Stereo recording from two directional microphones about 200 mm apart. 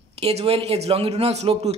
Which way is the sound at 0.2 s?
30° right (ahead or behind).